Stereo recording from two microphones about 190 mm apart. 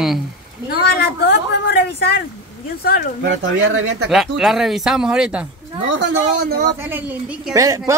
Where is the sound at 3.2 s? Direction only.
80° right.